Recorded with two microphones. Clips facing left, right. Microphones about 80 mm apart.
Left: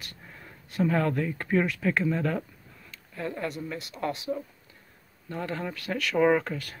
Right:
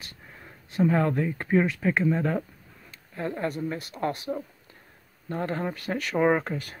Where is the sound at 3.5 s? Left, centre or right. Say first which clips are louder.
Right 4 dB; right.